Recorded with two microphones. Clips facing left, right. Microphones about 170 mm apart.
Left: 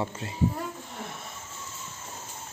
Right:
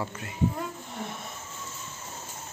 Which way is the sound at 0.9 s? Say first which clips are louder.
Right 2 dB; centre (ahead or behind).